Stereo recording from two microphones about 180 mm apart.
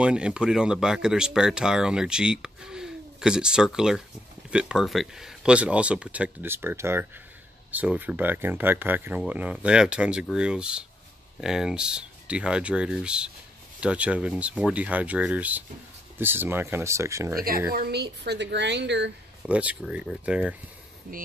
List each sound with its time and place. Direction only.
0.0 s speech: 5° right (ahead or behind)
17.7 s a woman's voice: 65° right (ahead or behind)
19.4 s speech: 5° right (ahead or behind)